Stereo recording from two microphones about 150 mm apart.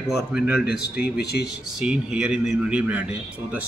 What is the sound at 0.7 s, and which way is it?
Speech, 90° left.